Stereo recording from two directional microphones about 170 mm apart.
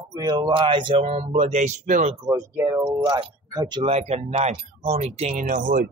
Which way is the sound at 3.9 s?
40° right (ahead or behind).